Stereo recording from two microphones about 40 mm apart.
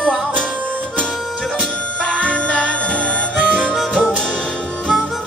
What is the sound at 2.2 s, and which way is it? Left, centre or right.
Music, left.